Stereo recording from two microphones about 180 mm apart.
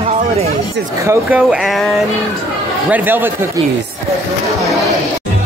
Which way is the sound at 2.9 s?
10° right (ahead or behind).